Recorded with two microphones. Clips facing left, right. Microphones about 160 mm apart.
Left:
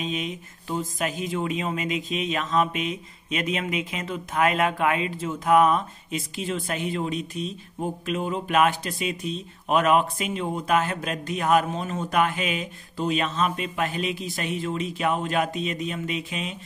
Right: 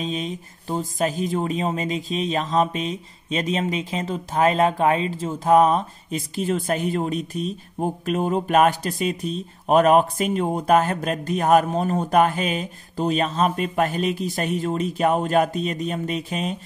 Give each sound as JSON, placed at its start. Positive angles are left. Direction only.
{"t": 0.0, "sound": "speech", "side_deg": -35}